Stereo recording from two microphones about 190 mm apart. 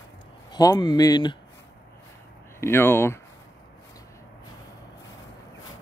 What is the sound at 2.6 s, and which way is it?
Speech, 10° left (ahead or behind).